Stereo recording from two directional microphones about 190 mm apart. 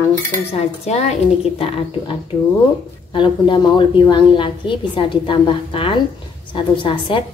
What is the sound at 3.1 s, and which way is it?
A woman's voice, 25° left (ahead or behind).